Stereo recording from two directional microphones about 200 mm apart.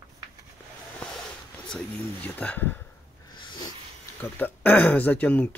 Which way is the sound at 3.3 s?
20° left (ahead or behind).